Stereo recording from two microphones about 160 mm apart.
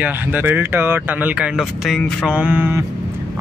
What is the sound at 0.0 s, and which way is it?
Speech, 10° right (ahead or behind).